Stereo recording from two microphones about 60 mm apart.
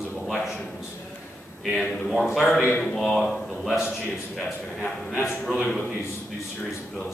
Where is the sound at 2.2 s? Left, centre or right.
Centre.